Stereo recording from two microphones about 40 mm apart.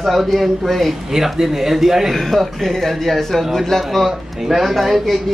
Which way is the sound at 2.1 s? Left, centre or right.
Centre.